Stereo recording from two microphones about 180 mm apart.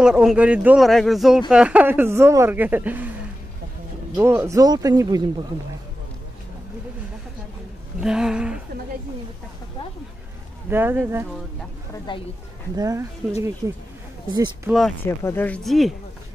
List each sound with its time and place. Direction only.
0.0 s a man's voice: 5° right (ahead or behind)
4.2 s speech: 15° right (ahead or behind)
8.0 s a man's voice: 5° right (ahead or behind)
10.7 s speech: 10° right (ahead or behind)
12.1 s speech: 25° left (ahead or behind)
12.7 s speech: 15° right (ahead or behind)
14.7 s a man's voice: centre (ahead or behind)
15.0 s speech: 10° left (ahead or behind)